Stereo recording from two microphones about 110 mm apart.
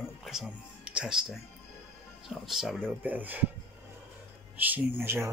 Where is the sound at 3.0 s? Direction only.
15° right (ahead or behind).